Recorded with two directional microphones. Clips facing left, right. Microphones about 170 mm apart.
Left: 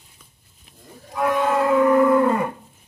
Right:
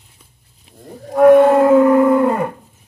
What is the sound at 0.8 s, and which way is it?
Wild animals, 40° right (ahead or behind).